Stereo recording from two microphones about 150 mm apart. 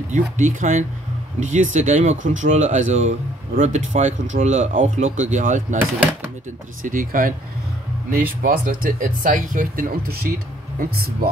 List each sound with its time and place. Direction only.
0.1 s speech: 60° right (ahead or behind)
6.8 s speech: 65° right (ahead or behind); by 11.2 s 80° right